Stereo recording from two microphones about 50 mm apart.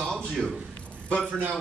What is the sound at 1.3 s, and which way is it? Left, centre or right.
Speech, right.